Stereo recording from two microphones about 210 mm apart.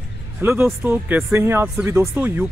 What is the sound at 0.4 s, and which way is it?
Speech, 10° right (ahead or behind).